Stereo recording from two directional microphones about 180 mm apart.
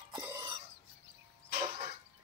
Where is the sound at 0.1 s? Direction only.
25° right (ahead or behind).